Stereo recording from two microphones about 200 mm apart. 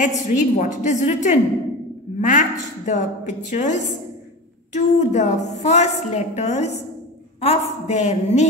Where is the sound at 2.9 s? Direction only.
35° left (ahead or behind).